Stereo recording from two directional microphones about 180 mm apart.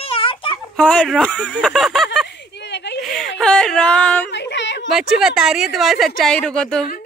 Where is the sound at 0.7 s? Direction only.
5° left (ahead or behind).